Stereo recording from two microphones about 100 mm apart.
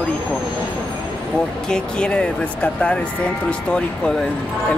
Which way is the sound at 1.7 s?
10° left (ahead or behind).